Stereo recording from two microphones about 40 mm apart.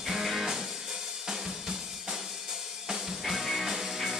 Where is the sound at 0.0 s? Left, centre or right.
Centre.